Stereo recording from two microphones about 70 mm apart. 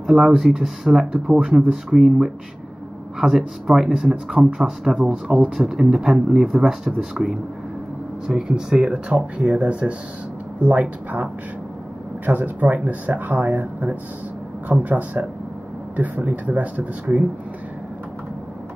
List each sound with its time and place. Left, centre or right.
0.0 s speech: centre
12.3 s speech: right
16.3 s speech: right